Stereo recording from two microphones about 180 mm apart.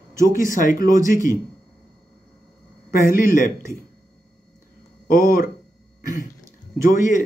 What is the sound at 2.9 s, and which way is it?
Speech, 50° left (ahead or behind).